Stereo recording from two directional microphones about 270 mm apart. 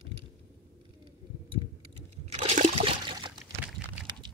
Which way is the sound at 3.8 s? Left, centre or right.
Centre.